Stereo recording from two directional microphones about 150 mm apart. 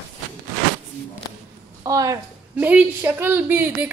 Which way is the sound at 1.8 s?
20° right (ahead or behind).